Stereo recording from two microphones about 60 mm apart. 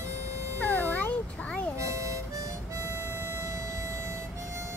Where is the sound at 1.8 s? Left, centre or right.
Right.